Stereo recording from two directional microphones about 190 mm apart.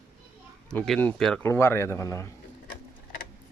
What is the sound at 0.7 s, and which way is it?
A man's voice, 5° left (ahead or behind).